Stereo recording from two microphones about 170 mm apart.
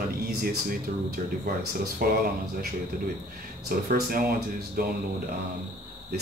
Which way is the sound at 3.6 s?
60° right (ahead or behind).